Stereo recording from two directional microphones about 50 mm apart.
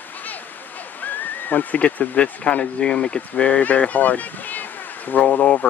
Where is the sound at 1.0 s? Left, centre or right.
Left.